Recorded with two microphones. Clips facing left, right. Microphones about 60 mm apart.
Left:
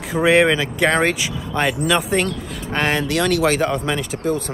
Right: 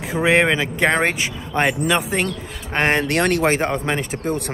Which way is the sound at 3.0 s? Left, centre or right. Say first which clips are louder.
Even; right.